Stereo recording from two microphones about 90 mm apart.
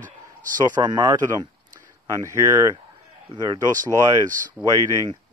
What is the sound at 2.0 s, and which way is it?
Speech, 35° right (ahead or behind).